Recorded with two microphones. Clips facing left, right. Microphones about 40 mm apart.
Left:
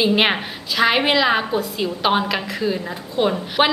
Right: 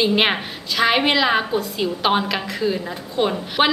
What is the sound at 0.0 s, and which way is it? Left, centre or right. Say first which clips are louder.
A woman's voice: left 1 dB; centre.